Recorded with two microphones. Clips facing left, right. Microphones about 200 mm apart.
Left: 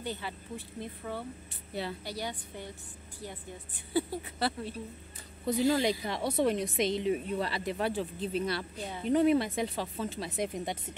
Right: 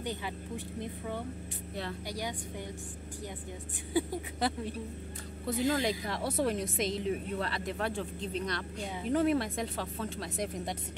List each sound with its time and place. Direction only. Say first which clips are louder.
0.0 s a woman's voice: right 1 dB; 15° right (ahead or behind)
1.7 s speech: left 3 dB; 5° left (ahead or behind)
2.0 s a woman's voice: even; 15° right (ahead or behind)
3.9 s a woman's voice: even; 15° right (ahead or behind)
5.7 s speech: left 2 dB; centre (ahead or behind)